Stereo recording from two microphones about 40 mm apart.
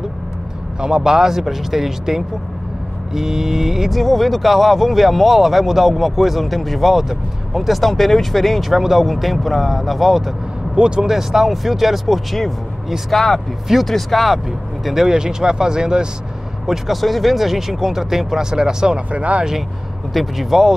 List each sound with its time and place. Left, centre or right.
0.7 s speech: centre
10.8 s speech: right
11.1 s speech: centre
14.9 s speech: centre
16.6 s speech: centre
18.9 s speech: right
20.2 s speech: centre